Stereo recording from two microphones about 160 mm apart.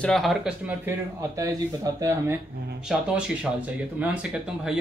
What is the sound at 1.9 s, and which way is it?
Speech, 20° right (ahead or behind).